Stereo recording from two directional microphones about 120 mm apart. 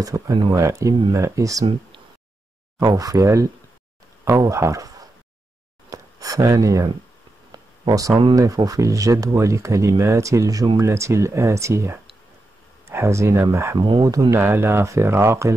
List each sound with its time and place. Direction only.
0.0 s speech: 30° right (ahead or behind)
2.8 s a man's voice: 30° right (ahead or behind)
5.9 s a sound: 30° right (ahead or behind)
8.4 s speech: 30° right (ahead or behind)
13.7 s speech: 40° right (ahead or behind)
14.0 s speech: 30° right (ahead or behind)